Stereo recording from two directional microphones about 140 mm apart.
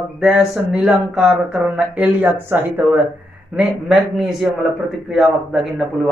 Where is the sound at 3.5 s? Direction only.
5° right (ahead or behind).